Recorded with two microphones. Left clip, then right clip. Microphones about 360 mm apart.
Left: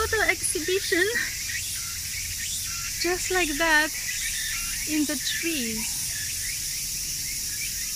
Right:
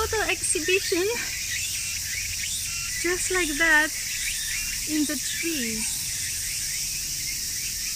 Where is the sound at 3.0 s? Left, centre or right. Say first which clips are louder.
Left 1 dB; centre.